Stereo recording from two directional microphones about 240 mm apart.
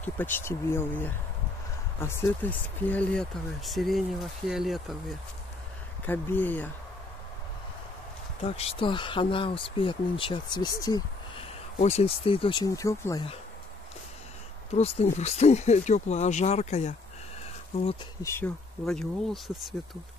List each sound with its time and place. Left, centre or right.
0.0 s speech: centre
6.0 s speech: centre
8.4 s speech: left
11.8 s speech: left
14.7 s speech: left
18.2 s speech: centre